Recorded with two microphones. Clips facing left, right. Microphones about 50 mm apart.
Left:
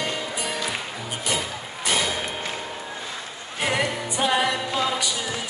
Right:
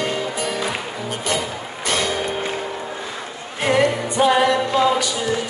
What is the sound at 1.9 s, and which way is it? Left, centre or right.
Music, centre.